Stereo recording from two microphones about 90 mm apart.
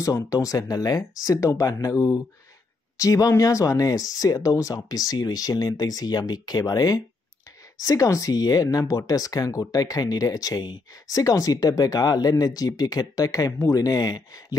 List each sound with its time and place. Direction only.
0.0 s speech: 40° left (ahead or behind)
11.1 s speech: 40° left (ahead or behind)